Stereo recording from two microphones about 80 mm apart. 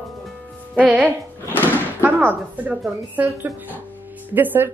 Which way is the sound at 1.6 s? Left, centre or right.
Right.